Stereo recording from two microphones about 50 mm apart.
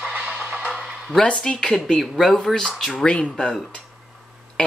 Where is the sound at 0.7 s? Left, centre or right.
Centre.